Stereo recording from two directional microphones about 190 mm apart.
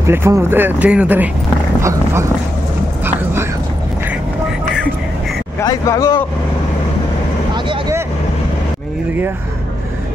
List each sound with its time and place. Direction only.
0.0 s speech: 15° right (ahead or behind)
5.6 s speech: 15° left (ahead or behind)
7.5 s vehicle: 25° right (ahead or behind)